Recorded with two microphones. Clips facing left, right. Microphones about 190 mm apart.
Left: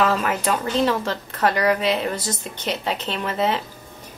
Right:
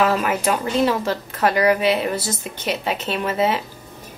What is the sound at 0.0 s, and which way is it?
Speech, 10° right (ahead or behind).